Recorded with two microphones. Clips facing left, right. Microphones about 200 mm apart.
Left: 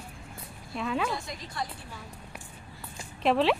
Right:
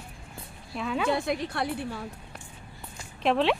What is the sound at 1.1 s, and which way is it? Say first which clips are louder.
Speech: right 9 dB; 65° right (ahead or behind).